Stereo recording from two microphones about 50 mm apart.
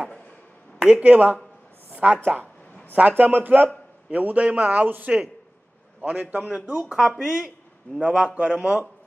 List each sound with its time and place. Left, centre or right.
0.7 s a sound: centre
1.0 s a man's voice: right
1.9 s a sound: right
2.9 s a man's voice: right
4.1 s a man's voice: right
6.3 s speech: right
7.0 s speech: centre
8.0 s speech: right